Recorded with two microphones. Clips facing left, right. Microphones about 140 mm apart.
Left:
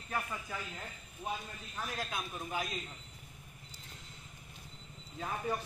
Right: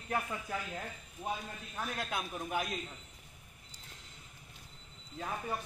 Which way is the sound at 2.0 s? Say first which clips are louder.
Right 2 dB; 65° right (ahead or behind).